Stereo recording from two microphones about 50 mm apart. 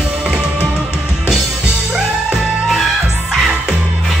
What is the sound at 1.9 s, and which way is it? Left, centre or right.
Music, centre.